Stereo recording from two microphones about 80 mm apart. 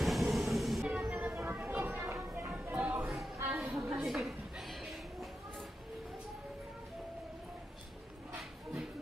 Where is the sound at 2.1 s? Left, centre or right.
Right.